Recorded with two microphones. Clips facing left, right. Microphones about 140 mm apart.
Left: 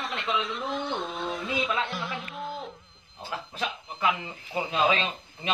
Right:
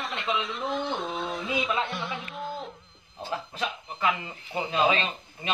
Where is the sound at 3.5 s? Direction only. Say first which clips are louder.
Right 1 dB; 5° left (ahead or behind).